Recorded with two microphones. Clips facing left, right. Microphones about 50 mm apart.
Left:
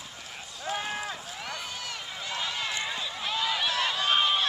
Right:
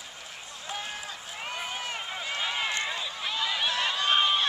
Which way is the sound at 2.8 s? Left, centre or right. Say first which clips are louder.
Right 1 dB; centre.